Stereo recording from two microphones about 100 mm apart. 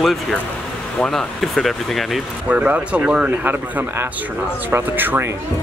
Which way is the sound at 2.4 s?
15° right (ahead or behind).